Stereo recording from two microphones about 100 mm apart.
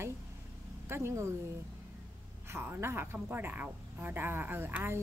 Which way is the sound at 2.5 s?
25° right (ahead or behind).